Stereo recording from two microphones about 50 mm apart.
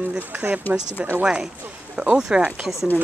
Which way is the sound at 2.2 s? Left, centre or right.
Centre.